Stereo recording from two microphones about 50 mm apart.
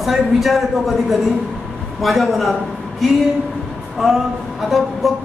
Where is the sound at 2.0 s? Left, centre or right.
Centre.